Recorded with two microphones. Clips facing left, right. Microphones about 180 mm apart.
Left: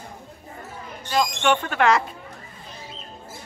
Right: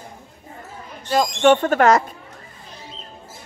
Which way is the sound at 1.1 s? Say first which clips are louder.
Right 6 dB; 40° right (ahead or behind).